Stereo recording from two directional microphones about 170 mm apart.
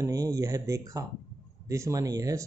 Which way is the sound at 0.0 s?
20° right (ahead or behind).